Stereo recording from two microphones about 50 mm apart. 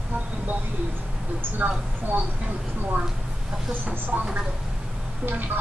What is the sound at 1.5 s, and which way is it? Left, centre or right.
Speech, right.